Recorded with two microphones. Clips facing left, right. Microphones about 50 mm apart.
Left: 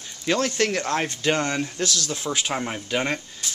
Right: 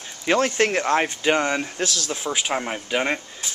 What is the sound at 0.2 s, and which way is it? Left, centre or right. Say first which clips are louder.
Speech: right 3 dB; right.